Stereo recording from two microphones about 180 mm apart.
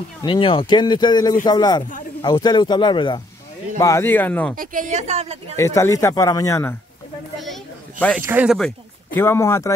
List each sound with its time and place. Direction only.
0.2 s speech: 30° left (ahead or behind)
3.8 s a man's voice: 15° left (ahead or behind)
4.6 s a woman's voice: 45° right (ahead or behind)
5.6 s a man's voice: 15° left (ahead or behind)
8.2 s speech: 10° right (ahead or behind)
8.5 s speech: 10° left (ahead or behind)